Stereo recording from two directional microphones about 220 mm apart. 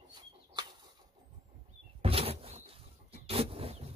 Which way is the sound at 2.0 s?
25° right (ahead or behind).